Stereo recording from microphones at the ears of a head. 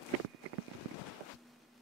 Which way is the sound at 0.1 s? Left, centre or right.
Right.